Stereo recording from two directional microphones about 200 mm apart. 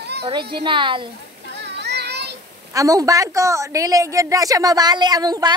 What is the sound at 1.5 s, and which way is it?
Children playing, 60° right (ahead or behind).